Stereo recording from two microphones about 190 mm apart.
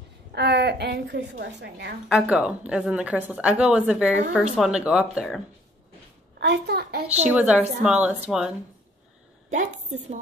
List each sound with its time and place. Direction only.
0.3 s a woman's voice: 60° right (ahead or behind)
2.0 s a woman's voice: 5° right (ahead or behind)
6.4 s a woman's voice: 65° right (ahead or behind)
7.2 s a woman's voice: 5° right (ahead or behind)
9.5 s a woman's voice: 40° right (ahead or behind)